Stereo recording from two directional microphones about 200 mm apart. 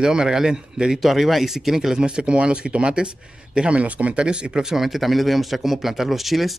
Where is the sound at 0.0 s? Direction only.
5° right (ahead or behind).